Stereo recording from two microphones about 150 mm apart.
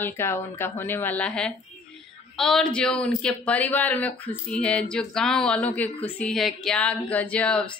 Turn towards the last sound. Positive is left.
turn(degrees=10)  # may be behind; listen again after turning